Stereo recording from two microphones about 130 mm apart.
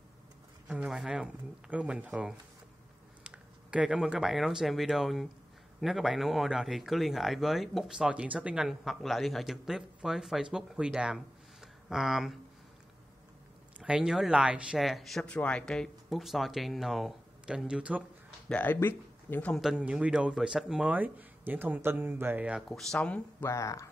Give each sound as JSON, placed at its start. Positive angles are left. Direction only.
{"t": 0.7, "sound": "speech", "side_deg": -5}
{"t": 13.7, "sound": "speech", "side_deg": -10}
{"t": 18.5, "sound": "speech", "side_deg": 15}
{"t": 19.5, "sound": "speech", "side_deg": -5}
{"t": 22.7, "sound": "speech", "side_deg": 5}
{"t": 23.4, "sound": "speech", "side_deg": 25}